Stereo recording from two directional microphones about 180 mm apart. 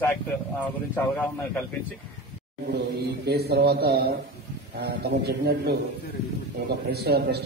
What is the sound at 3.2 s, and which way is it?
A man's voice, 65° right (ahead or behind).